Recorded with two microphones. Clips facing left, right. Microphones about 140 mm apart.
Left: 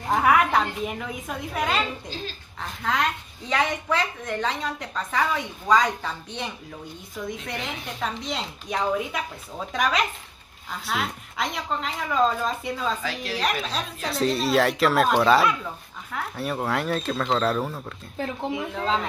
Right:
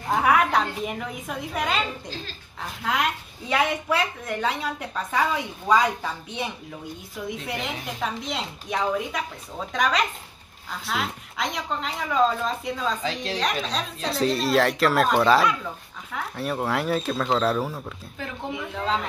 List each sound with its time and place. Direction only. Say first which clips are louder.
0.1 s a woman's voice: left 1 dB; centre (ahead or behind)
13.0 s a woman's voice: right 2 dB; 25° right (ahead or behind)
13.4 s speech: left 1 dB; 5° left (ahead or behind)
18.2 s speech: left 6 dB; 35° left (ahead or behind)
18.5 s speech: right 1 dB; centre (ahead or behind)